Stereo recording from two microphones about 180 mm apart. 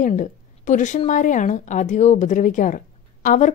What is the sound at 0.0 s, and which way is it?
A woman's voice, 45° left (ahead or behind).